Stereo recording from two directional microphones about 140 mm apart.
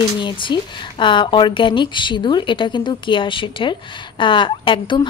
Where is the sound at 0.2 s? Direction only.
35° left (ahead or behind).